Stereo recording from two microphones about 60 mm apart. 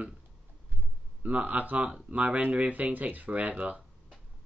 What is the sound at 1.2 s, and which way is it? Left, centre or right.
Speech, right.